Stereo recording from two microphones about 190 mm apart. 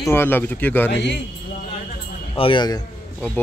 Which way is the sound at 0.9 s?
65° left (ahead or behind).